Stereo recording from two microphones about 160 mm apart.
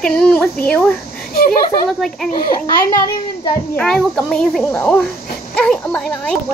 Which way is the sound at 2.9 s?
30° left (ahead or behind).